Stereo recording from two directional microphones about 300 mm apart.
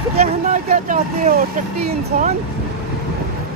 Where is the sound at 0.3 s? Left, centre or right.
Right.